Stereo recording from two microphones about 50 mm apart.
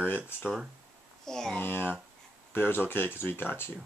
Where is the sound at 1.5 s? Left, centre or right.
Left.